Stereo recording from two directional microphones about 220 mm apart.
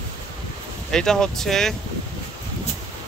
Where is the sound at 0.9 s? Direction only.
5° left (ahead or behind).